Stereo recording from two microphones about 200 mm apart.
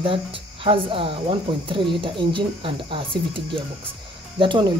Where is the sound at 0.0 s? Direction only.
25° right (ahead or behind).